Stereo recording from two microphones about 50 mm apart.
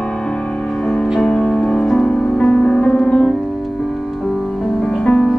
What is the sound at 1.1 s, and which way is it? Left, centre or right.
Music, centre.